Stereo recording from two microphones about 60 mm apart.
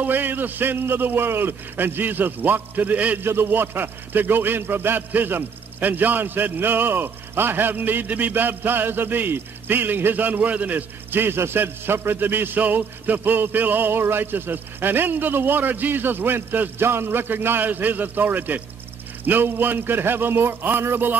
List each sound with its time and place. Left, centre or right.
0.0 s a man's voice: right
3.2 s a man's voice: right